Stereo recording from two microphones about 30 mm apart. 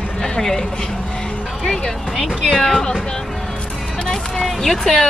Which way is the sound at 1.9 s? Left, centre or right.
Centre.